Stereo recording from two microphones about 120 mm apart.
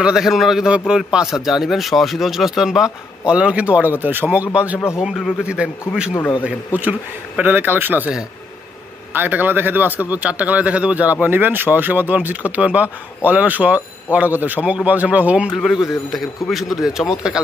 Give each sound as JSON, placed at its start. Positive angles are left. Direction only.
{"t": 0.0, "sound": "speech", "side_deg": -5}